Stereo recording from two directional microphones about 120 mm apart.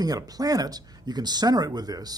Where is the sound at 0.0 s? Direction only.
30° right (ahead or behind).